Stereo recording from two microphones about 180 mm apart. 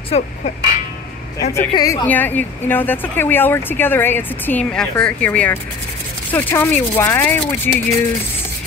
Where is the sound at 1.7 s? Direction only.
20° left (ahead or behind).